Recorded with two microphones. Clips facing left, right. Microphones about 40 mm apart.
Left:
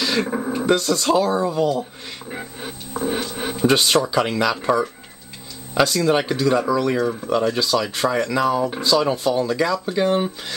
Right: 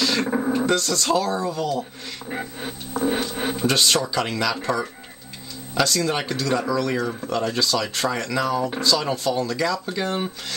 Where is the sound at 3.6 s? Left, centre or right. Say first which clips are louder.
Left 4 dB; centre.